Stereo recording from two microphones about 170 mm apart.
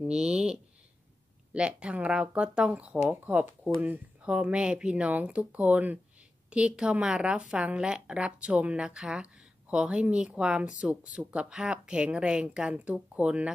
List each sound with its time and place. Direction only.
0.0 s a woman's voice: 5° right (ahead or behind)